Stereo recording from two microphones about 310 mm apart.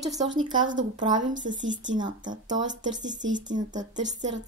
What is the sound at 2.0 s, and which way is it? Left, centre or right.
A woman's voice, centre.